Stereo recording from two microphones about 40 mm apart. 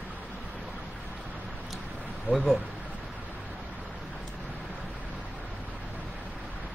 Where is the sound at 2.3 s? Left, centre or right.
Right.